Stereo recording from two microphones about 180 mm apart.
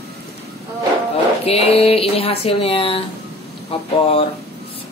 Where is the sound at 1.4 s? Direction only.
35° left (ahead or behind).